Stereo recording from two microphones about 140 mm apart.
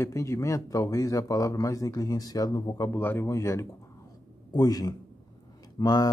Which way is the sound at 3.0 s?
15° left (ahead or behind).